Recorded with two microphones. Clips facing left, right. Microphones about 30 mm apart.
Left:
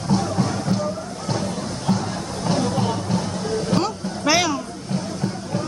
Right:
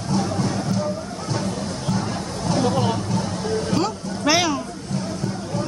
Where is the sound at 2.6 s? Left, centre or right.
Centre.